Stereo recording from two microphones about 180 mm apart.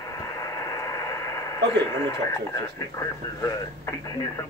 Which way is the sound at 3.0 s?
15° left (ahead or behind).